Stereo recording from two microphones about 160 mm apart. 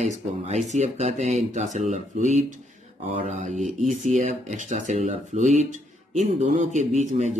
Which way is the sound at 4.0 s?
50° right (ahead or behind).